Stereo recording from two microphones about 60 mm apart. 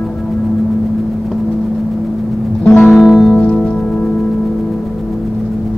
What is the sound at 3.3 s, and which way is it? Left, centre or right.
Music, centre.